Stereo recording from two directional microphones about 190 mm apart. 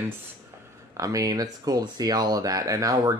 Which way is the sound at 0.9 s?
15° right (ahead or behind).